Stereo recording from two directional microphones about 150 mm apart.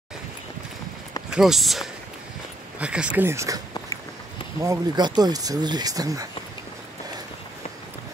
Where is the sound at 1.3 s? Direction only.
Centre (ahead or behind); by 6.2 s 25° right (ahead or behind).